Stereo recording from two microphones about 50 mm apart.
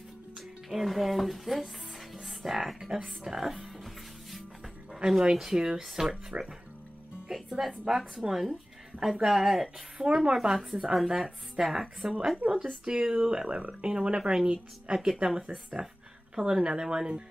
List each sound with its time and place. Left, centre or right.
0.7 s speech: centre
3.3 s music: centre
4.9 s dog: centre
5.3 s speech: centre
6.3 s speech: right
7.2 s speech: centre
9.9 s speech: centre
10.3 s speech: centre
12.4 s speech: right
12.9 s speech: centre